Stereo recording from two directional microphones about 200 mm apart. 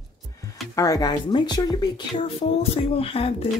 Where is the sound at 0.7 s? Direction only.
15° left (ahead or behind).